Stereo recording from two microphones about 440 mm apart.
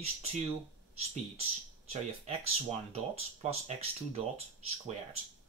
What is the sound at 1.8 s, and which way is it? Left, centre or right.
Speech, centre.